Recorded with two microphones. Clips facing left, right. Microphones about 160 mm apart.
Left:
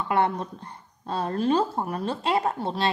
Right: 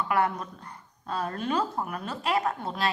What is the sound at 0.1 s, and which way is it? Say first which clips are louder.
A woman's voice: left 4 dB; 25° left (ahead or behind).